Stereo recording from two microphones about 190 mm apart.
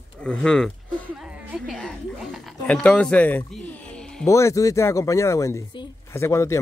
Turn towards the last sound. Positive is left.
turn(degrees=15)  # may be behind; listen again after turning